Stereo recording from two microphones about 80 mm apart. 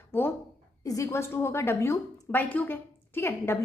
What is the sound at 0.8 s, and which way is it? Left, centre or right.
A woman's voice, left.